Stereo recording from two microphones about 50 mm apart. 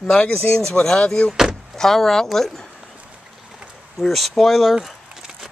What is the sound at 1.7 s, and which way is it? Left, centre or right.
Speech, centre.